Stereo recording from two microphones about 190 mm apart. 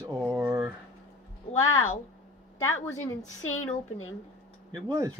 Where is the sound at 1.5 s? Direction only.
90° left.